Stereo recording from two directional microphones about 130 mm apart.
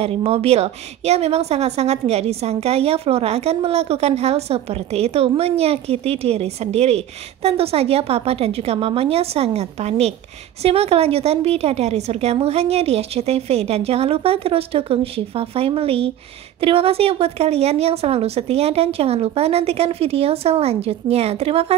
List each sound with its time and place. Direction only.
0.0 s a woman's voice: 50° right (ahead or behind)